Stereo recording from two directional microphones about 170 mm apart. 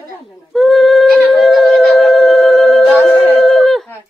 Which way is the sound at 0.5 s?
Centre (ahead or behind).